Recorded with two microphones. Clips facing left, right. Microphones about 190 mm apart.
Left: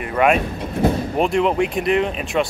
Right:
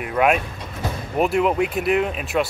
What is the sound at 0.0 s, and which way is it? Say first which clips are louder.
Speech: left 2 dB; centre (ahead or behind).